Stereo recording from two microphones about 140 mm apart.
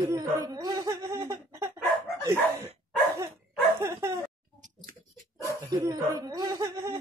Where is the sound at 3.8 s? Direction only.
20° right (ahead or behind).